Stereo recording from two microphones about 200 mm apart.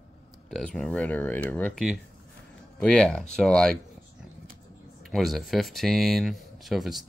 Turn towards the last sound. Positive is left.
turn(degrees=0)  # may be behind; listen again after turning